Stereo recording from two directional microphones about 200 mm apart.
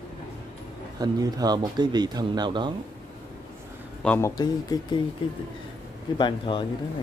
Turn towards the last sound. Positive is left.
turn(degrees=25)  # may be behind; listen again after turning